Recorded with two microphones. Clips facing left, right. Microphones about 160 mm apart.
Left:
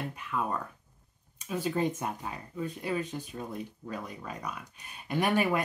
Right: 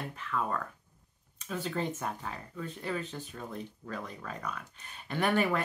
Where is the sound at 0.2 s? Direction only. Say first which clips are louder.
Even; 15° left (ahead or behind).